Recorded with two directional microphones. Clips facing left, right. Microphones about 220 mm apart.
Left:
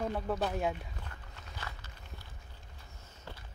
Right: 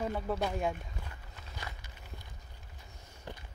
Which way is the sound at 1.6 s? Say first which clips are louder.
Even; 15° right (ahead or behind).